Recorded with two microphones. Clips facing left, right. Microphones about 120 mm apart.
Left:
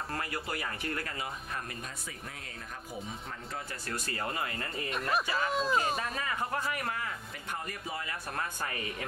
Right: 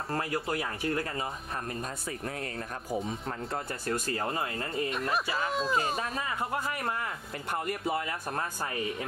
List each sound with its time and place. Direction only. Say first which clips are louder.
0.1 s speech: right 9 dB; 30° right (ahead or behind)
4.8 s speech: left 1 dB; centre (ahead or behind)
6.7 s speech: right 2 dB; 30° right (ahead or behind)
7.5 s speech: right 8 dB; 60° right (ahead or behind)
8.1 s speech: right 3 dB; 35° right (ahead or behind)